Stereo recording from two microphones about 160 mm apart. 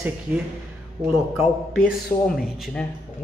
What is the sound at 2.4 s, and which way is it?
Speech, centre (ahead or behind).